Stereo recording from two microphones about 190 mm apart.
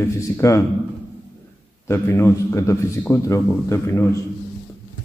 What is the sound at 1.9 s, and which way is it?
A man's voice, 15° left (ahead or behind).